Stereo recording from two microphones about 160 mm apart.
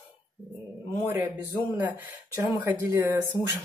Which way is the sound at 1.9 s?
20° right (ahead or behind).